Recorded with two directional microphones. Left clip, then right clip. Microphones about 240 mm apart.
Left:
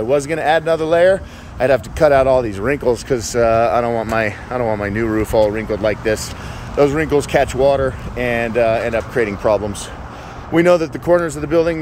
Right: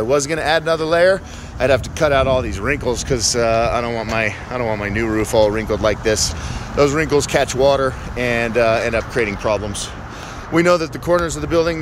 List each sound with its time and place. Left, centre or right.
0.1 s speech: centre